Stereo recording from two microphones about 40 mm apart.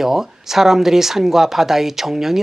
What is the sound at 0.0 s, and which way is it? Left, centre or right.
Speech, centre.